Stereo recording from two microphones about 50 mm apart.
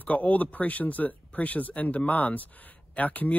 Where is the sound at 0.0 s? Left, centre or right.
Left.